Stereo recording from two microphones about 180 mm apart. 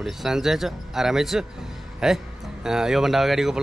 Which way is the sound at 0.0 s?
Centre (ahead or behind).